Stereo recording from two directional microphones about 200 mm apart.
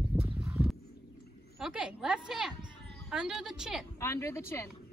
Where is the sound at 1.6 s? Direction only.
5° right (ahead or behind).